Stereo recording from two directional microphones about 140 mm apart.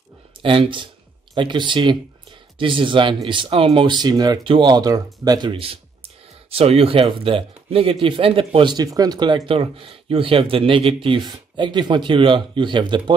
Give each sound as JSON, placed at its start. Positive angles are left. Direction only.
{"t": 0.4, "sound": "speech", "side_deg": -40}
{"t": 9.5, "sound": "speech", "side_deg": -40}